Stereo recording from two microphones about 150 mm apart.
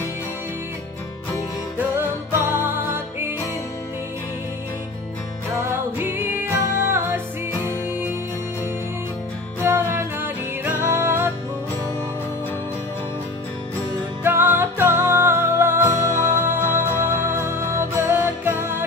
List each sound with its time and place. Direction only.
1.8 s music: 15° right (ahead or behind)
5.6 s music: 15° right (ahead or behind)
9.6 s music: 15° right (ahead or behind)
14.2 s music: 15° right (ahead or behind)